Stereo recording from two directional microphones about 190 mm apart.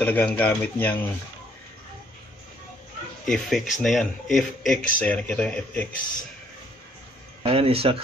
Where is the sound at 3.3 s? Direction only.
Centre (ahead or behind).